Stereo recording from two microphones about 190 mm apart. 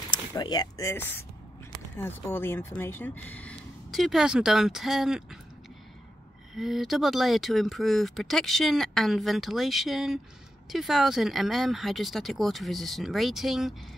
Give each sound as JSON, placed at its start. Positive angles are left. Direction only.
{"t": 0.1, "sound": "speech", "side_deg": 20}
{"t": 6.5, "sound": "speech", "side_deg": 0}